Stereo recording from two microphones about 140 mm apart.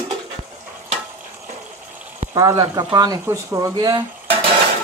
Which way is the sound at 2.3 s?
25° right (ahead or behind).